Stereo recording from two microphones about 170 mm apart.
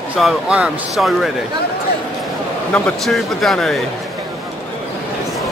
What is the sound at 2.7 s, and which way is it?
Speech, 5° left (ahead or behind).